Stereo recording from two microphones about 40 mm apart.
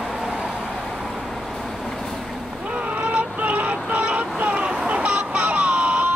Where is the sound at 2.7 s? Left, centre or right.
Right.